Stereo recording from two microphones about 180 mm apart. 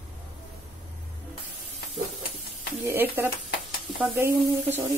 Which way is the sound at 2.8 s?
10° right (ahead or behind).